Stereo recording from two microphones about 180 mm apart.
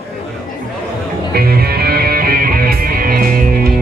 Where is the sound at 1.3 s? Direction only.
60° right (ahead or behind).